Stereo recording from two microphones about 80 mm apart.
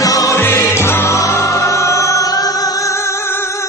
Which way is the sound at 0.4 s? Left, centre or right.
Left.